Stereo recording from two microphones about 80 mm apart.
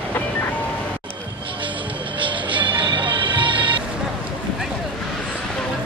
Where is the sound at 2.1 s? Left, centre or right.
Right.